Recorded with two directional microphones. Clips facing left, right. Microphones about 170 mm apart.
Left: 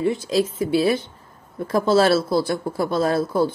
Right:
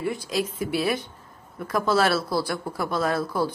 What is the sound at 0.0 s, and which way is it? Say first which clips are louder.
Speech: left 6 dB; 25° left (ahead or behind).